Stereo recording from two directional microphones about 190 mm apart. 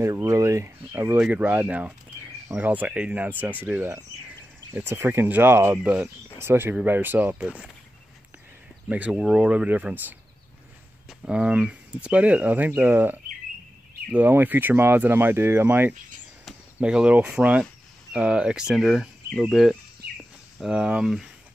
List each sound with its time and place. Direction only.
0.0 s speech: 15° right (ahead or behind)
8.8 s speech: 5° right (ahead or behind)